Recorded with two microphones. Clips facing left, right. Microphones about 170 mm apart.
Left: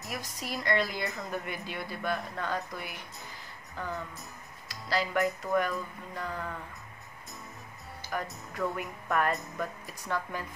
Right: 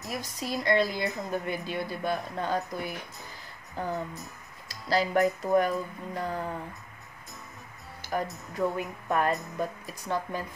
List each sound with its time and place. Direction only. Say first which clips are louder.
0.1 s speech: right 4 dB; 30° right (ahead or behind)
8.5 s speech: right 4 dB; 25° right (ahead or behind)